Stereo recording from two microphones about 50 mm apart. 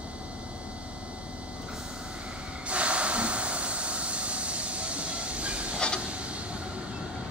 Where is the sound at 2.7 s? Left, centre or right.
Right.